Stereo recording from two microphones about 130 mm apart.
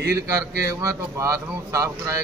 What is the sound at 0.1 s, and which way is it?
A man's voice, 20° right (ahead or behind).